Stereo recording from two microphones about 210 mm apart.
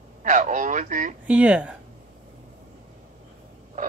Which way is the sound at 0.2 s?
35° right (ahead or behind).